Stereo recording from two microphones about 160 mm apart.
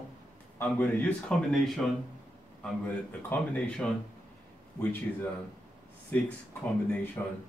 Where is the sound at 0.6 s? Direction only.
10° left (ahead or behind).